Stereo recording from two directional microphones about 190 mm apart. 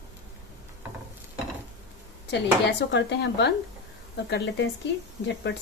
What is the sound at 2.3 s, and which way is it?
Speech, 65° left (ahead or behind).